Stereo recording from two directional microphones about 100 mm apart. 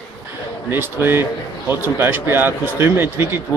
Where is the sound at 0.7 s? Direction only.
20° right (ahead or behind).